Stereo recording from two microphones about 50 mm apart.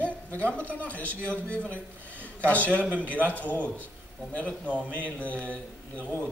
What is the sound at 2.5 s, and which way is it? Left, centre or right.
Mantra, left.